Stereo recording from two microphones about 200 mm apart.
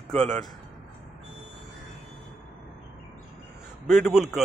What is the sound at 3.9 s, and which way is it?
Speech, centre (ahead or behind).